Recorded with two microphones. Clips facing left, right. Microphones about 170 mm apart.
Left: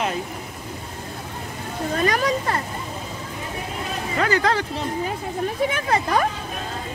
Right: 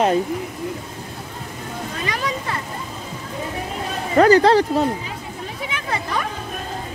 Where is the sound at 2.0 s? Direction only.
45° left (ahead or behind).